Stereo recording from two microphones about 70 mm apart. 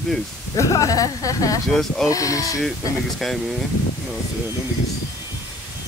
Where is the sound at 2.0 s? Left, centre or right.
Left.